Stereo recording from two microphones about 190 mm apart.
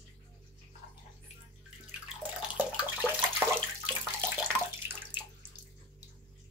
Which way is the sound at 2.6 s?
10° right (ahead or behind).